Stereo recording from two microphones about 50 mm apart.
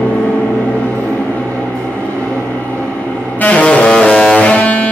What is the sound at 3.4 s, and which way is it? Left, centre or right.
Vehicle, left.